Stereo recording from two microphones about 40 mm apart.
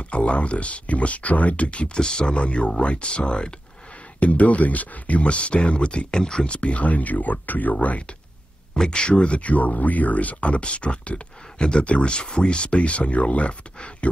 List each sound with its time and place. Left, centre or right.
0.0 s speech: left
2.0 s speech: centre
2.3 s speech: left
4.2 s speech: left
7.7 s speech: left
8.7 s speech: centre
9.2 s speech: left